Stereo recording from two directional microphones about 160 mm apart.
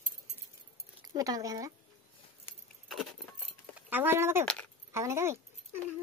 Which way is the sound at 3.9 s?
15° right (ahead or behind).